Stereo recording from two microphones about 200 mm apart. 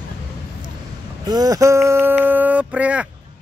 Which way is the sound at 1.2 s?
20° right (ahead or behind).